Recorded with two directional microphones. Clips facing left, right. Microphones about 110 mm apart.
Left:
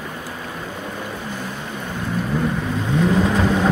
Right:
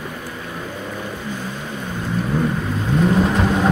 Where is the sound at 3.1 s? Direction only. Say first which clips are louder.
Even; centre (ahead or behind).